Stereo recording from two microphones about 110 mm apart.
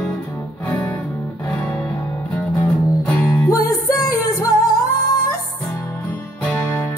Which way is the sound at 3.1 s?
15° left (ahead or behind).